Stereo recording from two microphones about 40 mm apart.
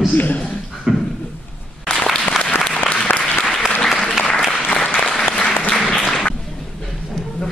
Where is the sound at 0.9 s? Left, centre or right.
Centre.